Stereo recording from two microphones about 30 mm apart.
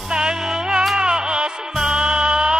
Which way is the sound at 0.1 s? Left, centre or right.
Right.